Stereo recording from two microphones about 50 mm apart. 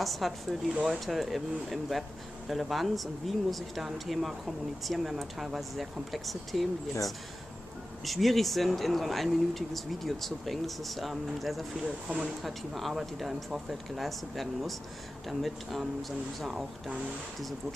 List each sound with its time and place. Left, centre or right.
0.0 s speech: centre
11.8 s speech: centre
12.4 s speech: centre